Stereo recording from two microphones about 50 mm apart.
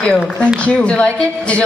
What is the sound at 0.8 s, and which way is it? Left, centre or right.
Speech, left.